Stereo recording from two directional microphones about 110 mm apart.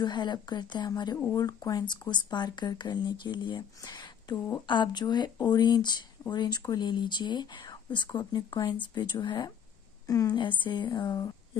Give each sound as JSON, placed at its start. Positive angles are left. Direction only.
{"t": 0.0, "sound": "a woman's voice", "side_deg": 45}
{"t": 10.0, "sound": "speech", "side_deg": 30}
{"t": 10.4, "sound": "a woman's voice", "side_deg": 45}